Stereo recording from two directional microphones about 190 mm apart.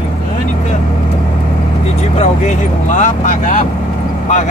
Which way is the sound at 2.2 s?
40° left (ahead or behind).